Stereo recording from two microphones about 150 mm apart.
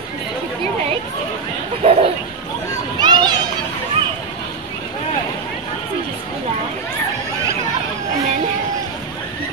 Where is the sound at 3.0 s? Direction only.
30° right (ahead or behind).